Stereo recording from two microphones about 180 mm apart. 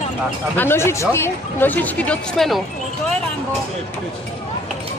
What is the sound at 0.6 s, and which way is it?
Speech, 15° left (ahead or behind).